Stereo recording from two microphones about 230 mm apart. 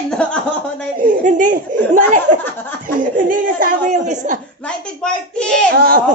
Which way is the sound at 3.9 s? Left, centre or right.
Right.